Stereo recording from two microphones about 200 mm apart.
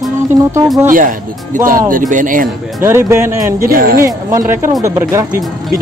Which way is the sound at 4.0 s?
15° right (ahead or behind).